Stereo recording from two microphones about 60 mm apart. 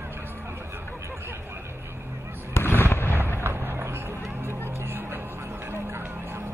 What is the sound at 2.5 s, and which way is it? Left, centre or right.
Fireworks, left.